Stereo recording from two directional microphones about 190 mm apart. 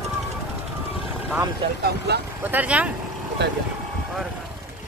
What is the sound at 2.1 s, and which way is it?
Speech, 60° right (ahead or behind).